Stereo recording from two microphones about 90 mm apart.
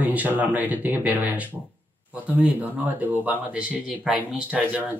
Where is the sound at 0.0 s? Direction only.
15° right (ahead or behind).